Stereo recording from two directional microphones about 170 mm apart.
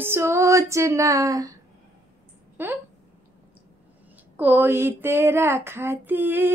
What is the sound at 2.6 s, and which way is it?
Female singing, 10° right (ahead or behind).